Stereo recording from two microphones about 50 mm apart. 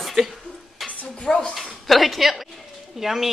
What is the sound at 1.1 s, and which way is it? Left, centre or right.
Speech, centre.